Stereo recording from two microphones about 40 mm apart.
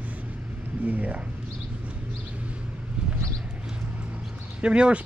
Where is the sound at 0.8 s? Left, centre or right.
Right.